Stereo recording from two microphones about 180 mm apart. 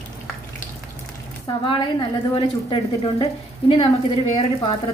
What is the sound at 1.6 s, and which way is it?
A woman's voice, 30° left (ahead or behind).